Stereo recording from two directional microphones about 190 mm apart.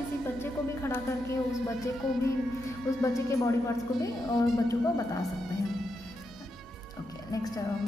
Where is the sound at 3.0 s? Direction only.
15° left (ahead or behind).